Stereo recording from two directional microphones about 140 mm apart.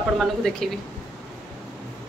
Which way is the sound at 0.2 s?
Centre (ahead or behind).